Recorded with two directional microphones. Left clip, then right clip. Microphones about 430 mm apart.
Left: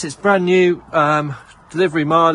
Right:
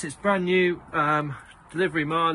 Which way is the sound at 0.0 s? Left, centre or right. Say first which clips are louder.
Left 9 dB; centre.